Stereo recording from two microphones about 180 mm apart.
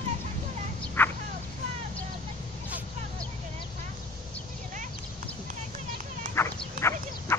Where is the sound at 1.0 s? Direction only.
10° left (ahead or behind).